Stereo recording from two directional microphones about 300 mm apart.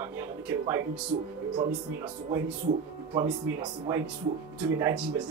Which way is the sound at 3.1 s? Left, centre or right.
Centre.